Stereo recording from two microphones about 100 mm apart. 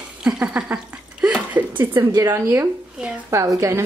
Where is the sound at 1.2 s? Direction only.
15° right (ahead or behind).